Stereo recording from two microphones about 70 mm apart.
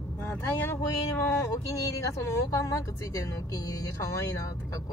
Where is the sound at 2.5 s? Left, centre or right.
Left.